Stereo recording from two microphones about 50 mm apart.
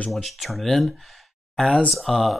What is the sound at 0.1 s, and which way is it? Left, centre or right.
Speech, centre.